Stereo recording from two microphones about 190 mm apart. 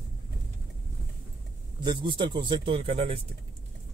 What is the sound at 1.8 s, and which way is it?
Speech, 25° right (ahead or behind).